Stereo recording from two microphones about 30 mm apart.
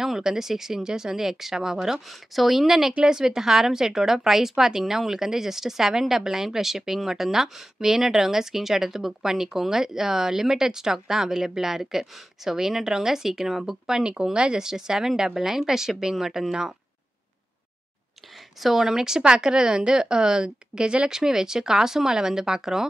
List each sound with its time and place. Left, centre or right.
0.0 s speech: centre
2.0 s speech: centre
14.3 s speech: right
14.6 s a woman's voice: centre
18.6 s a woman's voice: centre; by 21.1 s right
21.1 s a woman's voice: centre